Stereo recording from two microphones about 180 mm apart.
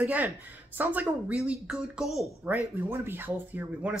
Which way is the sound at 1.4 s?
5° right (ahead or behind).